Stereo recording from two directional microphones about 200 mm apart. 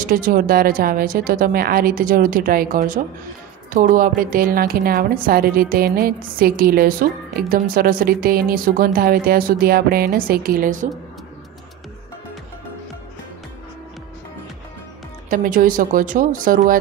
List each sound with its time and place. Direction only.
0.0 s a woman's voice: 45° right (ahead or behind)
15.2 s a woman's voice: 40° right (ahead or behind)